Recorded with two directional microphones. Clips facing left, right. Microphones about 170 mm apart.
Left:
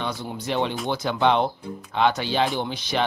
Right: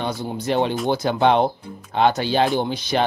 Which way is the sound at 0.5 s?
45° right (ahead or behind).